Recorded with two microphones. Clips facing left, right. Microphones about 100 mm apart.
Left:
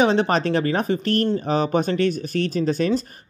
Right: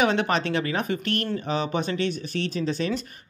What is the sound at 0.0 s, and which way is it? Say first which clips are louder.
Speech: left 4 dB; 30° left (ahead or behind).